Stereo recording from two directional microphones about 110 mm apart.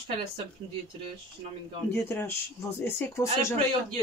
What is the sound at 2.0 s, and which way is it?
Speech, 25° left (ahead or behind).